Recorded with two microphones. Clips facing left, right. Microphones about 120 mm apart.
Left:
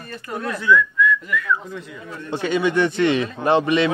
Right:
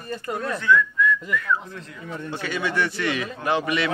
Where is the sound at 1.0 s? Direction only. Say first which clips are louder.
Left 2 dB; 35° right (ahead or behind).